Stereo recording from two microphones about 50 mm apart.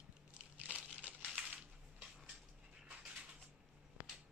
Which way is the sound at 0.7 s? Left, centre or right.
Right.